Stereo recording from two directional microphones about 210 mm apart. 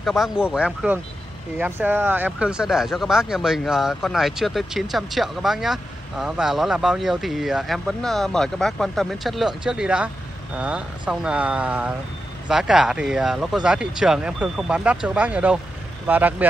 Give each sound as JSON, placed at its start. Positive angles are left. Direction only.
{"t": 0.0, "sound": "speech", "side_deg": 0}